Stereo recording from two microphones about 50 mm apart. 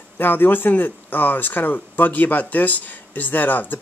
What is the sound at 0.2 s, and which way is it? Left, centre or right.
Speech, left.